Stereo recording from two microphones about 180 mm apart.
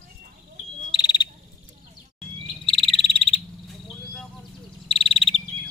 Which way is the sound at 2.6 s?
30° left (ahead or behind).